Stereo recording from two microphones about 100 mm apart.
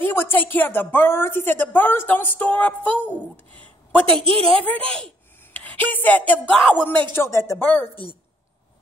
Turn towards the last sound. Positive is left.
turn(degrees=30)  # may be behind; listen again after turning